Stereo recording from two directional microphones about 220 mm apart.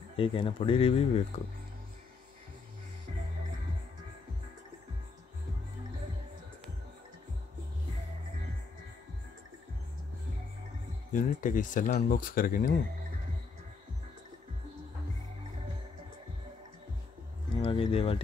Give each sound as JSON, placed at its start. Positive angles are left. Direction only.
{"t": 0.1, "sound": "speech", "side_deg": 25}
{"t": 11.1, "sound": "speech", "side_deg": 35}
{"t": 17.6, "sound": "a sound", "side_deg": 25}